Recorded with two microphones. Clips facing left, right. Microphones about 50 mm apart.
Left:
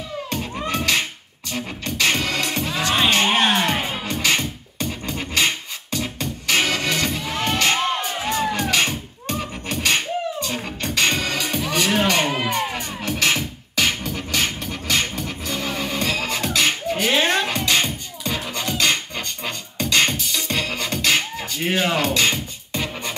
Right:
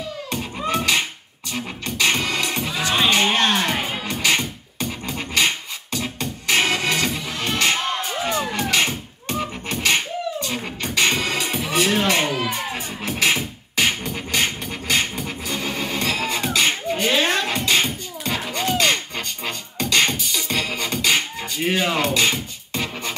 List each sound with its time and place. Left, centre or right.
0.3 s music: centre
3.3 s scratching: centre
5.9 s music: centre
12.3 s music: left
12.7 s music: centre
17.1 s music: centre
17.5 s music: centre